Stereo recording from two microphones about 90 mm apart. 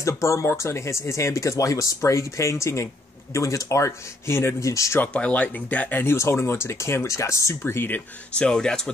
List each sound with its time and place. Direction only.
0.0 s speech: 35° left (ahead or behind)
5.0 s speech: 15° left (ahead or behind)
8.5 s speech: 5° left (ahead or behind)